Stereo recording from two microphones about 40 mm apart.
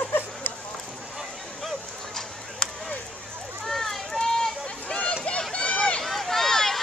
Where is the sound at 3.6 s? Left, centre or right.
Centre.